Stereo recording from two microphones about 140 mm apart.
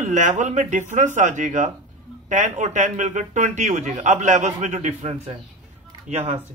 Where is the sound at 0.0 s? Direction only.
60° right (ahead or behind); by 6.4 s 45° right (ahead or behind).